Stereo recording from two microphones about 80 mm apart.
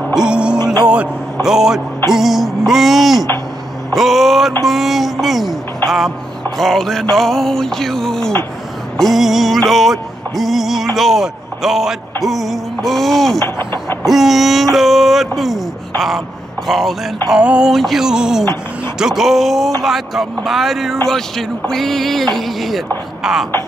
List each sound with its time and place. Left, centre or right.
0.1 s music: centre
0.8 s speech: centre
5.9 s music: centre
6.6 s speech: centre
8.9 s music: centre
11.0 s a man's voice: centre
13.4 s speech: left
14.0 s speech: centre
17.3 s a sound: centre
17.7 s speech: centre